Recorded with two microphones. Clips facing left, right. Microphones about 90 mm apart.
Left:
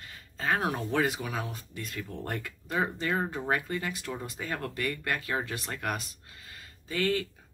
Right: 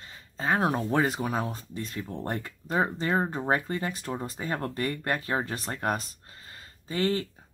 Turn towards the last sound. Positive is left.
turn(degrees=-30)  # may be behind; listen again after turning